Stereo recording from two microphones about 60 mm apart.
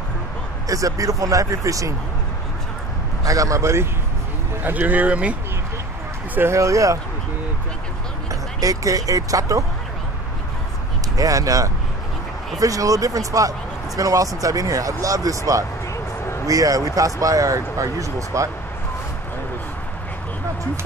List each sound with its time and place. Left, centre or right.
0.7 s speech: right
3.3 s speech: right
4.6 s speech: right
6.5 s speech: right
8.3 s speech: right
11.1 s speech: right